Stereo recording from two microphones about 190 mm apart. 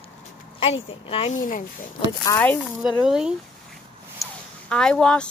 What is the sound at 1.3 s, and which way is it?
Speech, 45° left (ahead or behind).